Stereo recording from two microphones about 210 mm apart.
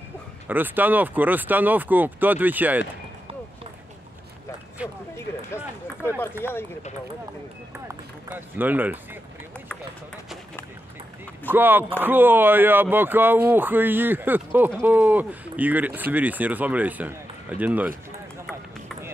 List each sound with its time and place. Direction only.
0.5 s speech: 10° right (ahead or behind)
6.0 s speech: 10° left (ahead or behind)
7.9 s speech: 10° right (ahead or behind)
11.4 s speech: 10° right (ahead or behind)